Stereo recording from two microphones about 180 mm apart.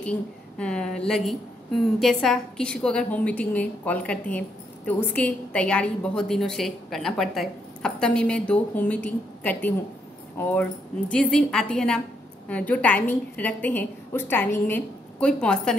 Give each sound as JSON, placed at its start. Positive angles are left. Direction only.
{"t": 0.0, "sound": "a woman's voice", "side_deg": 5}